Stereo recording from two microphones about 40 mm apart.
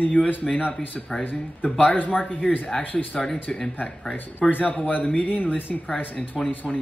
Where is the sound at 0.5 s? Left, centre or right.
Left.